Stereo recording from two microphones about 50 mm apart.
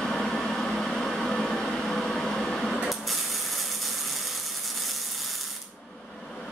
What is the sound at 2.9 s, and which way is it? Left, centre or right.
Ratchet, centre.